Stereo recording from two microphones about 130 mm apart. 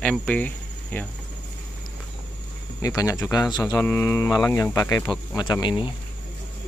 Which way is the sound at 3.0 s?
25° left (ahead or behind).